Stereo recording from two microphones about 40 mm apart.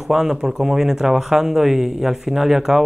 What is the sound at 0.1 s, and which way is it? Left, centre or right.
Speech, centre.